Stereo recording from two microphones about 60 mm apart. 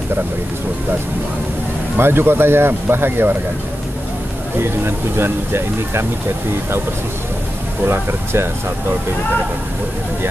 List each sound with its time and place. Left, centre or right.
2.0 s speech: right
4.6 s speech: right
7.8 s speech: right